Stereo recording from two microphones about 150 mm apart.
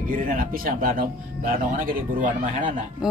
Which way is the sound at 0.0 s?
70° right (ahead or behind).